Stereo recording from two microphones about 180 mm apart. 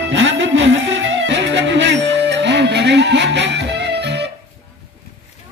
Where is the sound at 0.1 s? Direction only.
90° right; by 4.2 s 70° right (ahead or behind).